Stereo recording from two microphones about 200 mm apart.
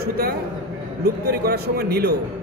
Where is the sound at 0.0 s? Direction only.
50° right (ahead or behind).